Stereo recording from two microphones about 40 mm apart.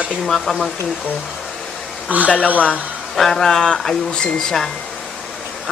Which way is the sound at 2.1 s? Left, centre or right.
Right.